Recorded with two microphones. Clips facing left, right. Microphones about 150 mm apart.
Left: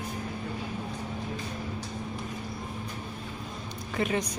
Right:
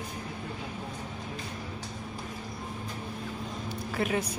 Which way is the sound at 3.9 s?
5° right (ahead or behind).